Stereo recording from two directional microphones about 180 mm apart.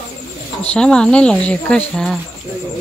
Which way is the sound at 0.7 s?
5° left (ahead or behind).